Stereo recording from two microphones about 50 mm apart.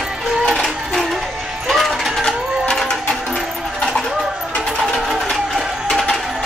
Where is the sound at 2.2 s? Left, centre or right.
Centre.